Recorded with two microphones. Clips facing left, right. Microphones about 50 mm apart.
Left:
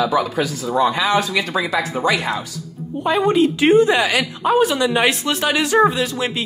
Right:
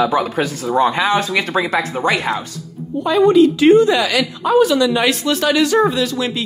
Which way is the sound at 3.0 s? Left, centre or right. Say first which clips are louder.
Right 4 dB; left.